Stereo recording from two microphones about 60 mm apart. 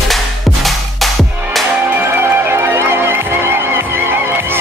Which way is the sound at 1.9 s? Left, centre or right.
Right.